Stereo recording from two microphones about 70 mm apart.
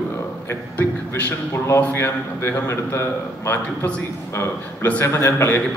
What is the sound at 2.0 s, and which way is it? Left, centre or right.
A man's voice, left.